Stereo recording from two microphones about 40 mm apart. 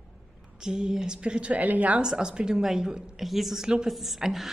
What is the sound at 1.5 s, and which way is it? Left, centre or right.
Speech, right.